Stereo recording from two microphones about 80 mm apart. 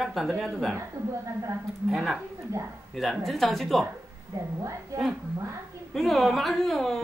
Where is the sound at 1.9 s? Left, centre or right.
Centre.